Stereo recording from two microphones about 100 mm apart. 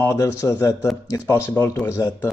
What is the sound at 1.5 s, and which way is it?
Speech, 20° left (ahead or behind).